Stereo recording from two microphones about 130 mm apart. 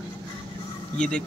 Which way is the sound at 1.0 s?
5° left (ahead or behind).